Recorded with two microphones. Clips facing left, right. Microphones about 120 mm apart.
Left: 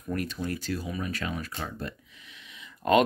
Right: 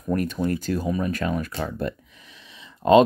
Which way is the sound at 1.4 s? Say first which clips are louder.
Right 8 dB; 70° right (ahead or behind).